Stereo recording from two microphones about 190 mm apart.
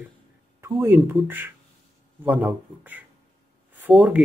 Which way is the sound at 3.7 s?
10° right (ahead or behind).